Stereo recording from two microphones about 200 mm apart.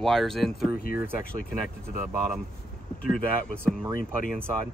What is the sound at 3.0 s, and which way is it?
Speech, 45° left (ahead or behind).